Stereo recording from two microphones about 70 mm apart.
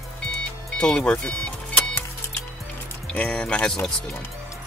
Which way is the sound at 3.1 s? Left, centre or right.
Centre.